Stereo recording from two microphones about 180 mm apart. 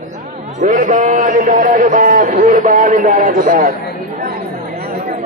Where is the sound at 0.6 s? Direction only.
45° right (ahead or behind).